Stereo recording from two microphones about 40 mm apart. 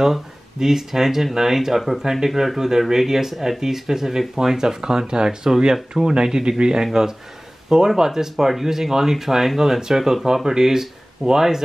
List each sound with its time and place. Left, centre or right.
0.0 s speech: centre
6.1 s speech: centre